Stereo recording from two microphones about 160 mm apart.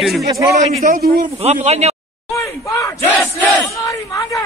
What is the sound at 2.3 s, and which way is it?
Speech, 20° left (ahead or behind).